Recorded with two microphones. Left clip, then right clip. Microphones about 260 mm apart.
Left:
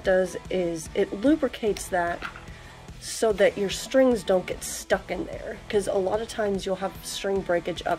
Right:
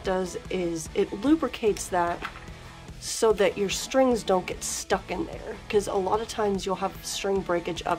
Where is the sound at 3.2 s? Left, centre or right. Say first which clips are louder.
Left 1 dB; centre.